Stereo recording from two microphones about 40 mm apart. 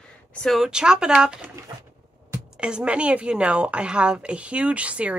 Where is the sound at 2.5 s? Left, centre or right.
Right.